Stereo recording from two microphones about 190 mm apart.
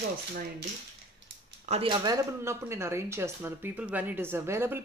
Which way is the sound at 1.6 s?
30° right (ahead or behind).